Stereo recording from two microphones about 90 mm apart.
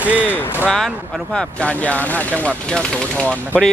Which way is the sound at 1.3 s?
15° left (ahead or behind).